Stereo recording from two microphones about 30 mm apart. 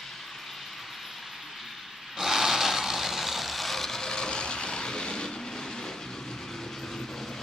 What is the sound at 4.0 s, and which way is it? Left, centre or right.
Vehicle, left.